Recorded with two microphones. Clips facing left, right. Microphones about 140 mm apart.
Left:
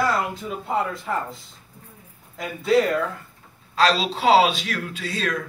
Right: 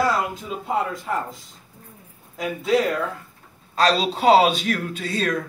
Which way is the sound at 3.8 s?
45° right (ahead or behind).